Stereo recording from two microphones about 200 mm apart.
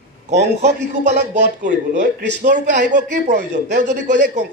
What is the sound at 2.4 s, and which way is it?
A man's voice, 40° right (ahead or behind).